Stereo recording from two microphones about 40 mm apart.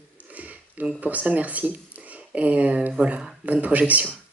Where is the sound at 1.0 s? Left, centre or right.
Right.